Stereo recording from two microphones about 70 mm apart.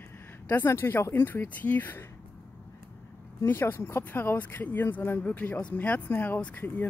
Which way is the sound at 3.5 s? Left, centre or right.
Left.